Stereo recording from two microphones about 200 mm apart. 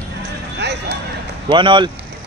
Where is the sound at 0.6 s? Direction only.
55° right (ahead or behind).